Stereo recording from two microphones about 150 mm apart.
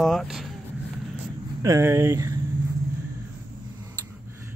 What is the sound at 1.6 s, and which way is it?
Speech, 20° right (ahead or behind).